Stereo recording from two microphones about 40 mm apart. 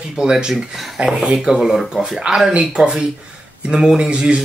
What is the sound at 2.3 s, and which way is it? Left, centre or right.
Speech, right.